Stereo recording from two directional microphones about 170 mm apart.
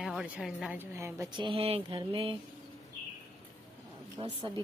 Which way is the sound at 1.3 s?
30° right (ahead or behind).